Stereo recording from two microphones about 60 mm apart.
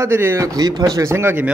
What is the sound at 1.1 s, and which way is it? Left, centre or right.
Speech, right.